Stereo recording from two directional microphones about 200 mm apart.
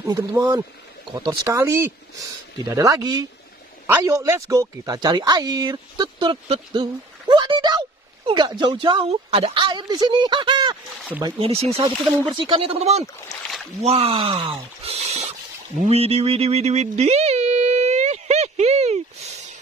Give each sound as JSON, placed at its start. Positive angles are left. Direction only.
{"t": 0.0, "sound": "a woman's voice", "side_deg": -20}
{"t": 11.1, "sound": "speech", "side_deg": -10}
{"t": 11.3, "sound": "a woman's voice", "side_deg": -30}
{"t": 15.8, "sound": "a sound", "side_deg": -30}